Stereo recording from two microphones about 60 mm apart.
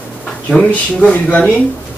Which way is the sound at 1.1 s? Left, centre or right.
Left.